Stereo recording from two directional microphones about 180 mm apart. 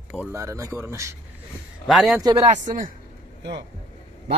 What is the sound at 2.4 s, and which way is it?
Speech, 40° right (ahead or behind).